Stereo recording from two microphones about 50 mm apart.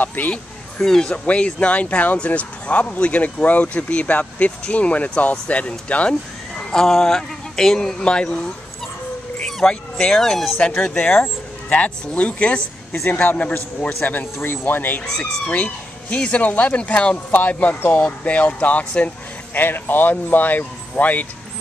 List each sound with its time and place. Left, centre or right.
0.0 s speech: left
0.3 s speech: centre
1.2 s speech: left
6.6 s speech: centre
8.0 s speech: left
9.5 s speech: centre
11.7 s speech: left
13.4 s speech: left